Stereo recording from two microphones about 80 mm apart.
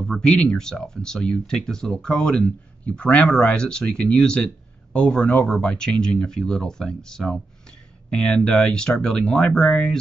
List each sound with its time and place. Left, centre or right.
0.0 s speech: centre